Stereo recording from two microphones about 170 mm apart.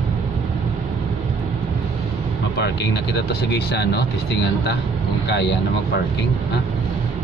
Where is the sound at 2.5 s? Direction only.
80° left.